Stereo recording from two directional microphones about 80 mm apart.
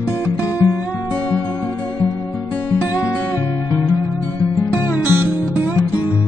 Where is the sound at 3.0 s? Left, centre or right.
Left.